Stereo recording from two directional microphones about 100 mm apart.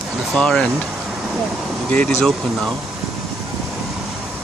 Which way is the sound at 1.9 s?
15° left (ahead or behind).